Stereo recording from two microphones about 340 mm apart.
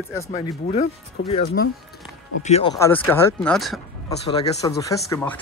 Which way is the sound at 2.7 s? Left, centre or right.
Centre.